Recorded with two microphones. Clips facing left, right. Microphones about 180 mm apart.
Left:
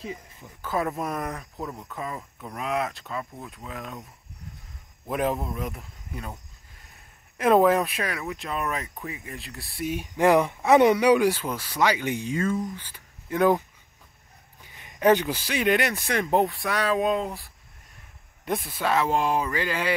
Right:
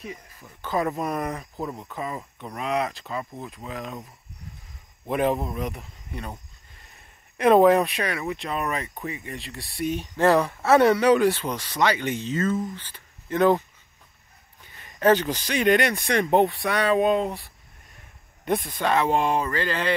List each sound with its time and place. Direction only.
0.0 s a sound: 25° left (ahead or behind)
0.6 s speech: 5° left (ahead or behind)
5.0 s speech: centre (ahead or behind)
7.3 s speech: centre (ahead or behind)
14.7 s speech: 15° left (ahead or behind)